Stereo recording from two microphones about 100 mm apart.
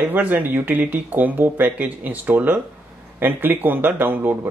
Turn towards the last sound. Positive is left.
turn(degrees=-20)  # may be behind; listen again after turning